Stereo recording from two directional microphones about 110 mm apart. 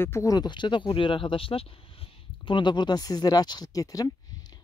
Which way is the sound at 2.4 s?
45° left (ahead or behind).